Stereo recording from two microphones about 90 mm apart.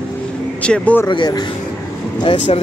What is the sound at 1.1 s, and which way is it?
Speech, 55° left (ahead or behind).